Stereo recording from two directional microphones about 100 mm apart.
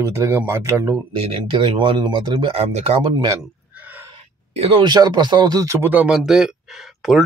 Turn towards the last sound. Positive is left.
turn(degrees=-5)  # may be behind; listen again after turning